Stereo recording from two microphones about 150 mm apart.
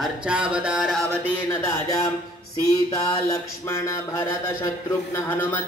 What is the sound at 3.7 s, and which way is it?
Speech, 15° left (ahead or behind).